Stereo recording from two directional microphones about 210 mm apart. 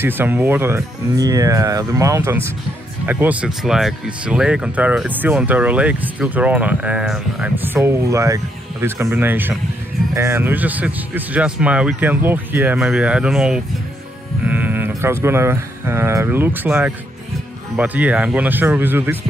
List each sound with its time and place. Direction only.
0.0 s speech: 10° right (ahead or behind)